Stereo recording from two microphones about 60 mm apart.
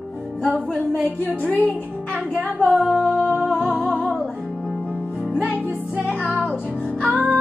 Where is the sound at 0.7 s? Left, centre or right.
Left.